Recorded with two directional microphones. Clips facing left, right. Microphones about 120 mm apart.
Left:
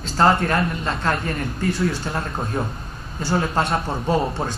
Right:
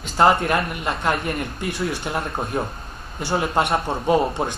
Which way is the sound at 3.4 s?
20° right (ahead or behind).